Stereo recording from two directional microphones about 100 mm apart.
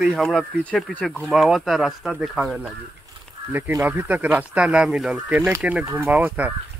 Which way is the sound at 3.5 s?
20° right (ahead or behind).